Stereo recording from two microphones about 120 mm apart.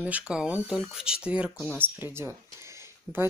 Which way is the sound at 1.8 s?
20° right (ahead or behind).